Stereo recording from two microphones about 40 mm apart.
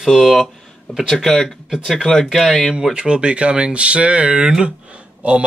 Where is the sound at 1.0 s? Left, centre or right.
Centre.